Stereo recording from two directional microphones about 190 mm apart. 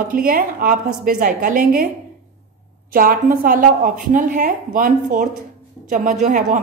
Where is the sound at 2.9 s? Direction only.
45° right (ahead or behind).